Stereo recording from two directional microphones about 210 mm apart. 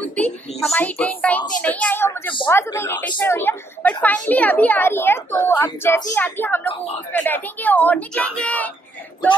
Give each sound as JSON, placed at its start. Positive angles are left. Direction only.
{"t": 0.0, "sound": "a woman's voice", "side_deg": 5}
{"t": 6.7, "sound": "speech", "side_deg": 30}
{"t": 7.1, "sound": "a woman's voice", "side_deg": 10}